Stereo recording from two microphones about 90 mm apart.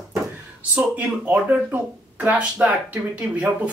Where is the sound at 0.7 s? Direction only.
15° right (ahead or behind).